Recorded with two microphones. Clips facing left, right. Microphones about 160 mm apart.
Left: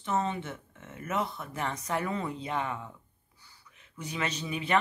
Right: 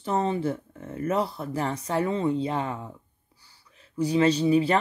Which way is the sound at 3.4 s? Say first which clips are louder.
Right 1 dB; 35° right (ahead or behind).